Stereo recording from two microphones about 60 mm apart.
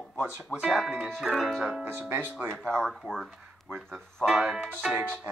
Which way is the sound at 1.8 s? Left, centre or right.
Right.